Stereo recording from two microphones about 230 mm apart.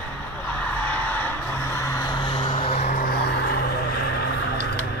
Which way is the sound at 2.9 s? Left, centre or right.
Left.